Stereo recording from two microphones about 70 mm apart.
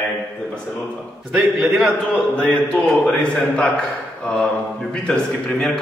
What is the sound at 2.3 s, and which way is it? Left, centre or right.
A man's voice, centre.